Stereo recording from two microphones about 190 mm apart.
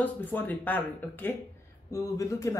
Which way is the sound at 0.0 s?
10° left (ahead or behind).